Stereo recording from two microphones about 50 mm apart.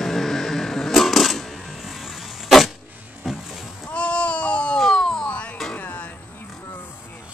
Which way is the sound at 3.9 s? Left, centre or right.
Left.